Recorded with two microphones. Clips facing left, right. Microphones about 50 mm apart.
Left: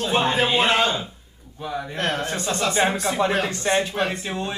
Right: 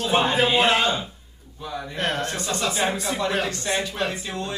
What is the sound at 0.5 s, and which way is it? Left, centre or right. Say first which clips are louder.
Speech: even; centre.